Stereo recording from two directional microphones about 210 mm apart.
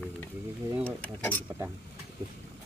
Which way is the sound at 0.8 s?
10° left (ahead or behind).